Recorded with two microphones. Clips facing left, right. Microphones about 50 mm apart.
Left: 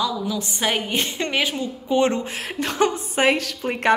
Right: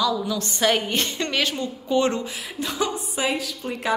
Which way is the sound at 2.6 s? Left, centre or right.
Left.